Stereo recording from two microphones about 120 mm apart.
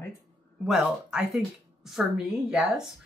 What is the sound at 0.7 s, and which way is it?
A woman's voice, 5° right (ahead or behind).